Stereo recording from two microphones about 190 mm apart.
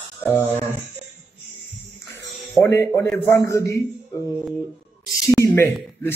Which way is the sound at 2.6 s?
15° left (ahead or behind).